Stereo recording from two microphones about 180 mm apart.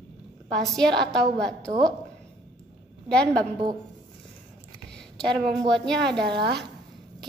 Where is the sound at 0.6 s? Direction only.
5° left (ahead or behind).